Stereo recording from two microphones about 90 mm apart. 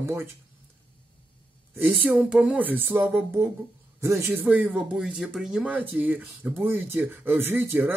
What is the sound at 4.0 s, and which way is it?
Speech, 35° right (ahead or behind).